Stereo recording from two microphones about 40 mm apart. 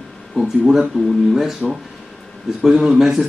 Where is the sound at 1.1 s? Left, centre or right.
Centre.